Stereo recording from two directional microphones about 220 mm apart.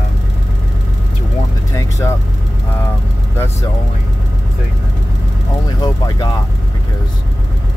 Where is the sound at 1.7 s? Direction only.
15° left (ahead or behind).